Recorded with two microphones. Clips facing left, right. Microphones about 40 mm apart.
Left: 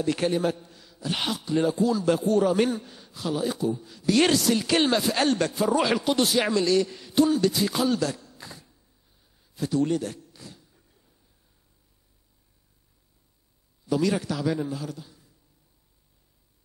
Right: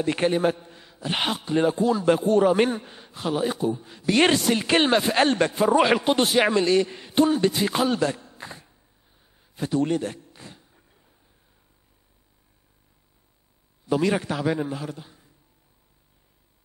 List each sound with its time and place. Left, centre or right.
0.0 s a man's voice: right
9.2 s a sound: right
13.8 s a man's voice: right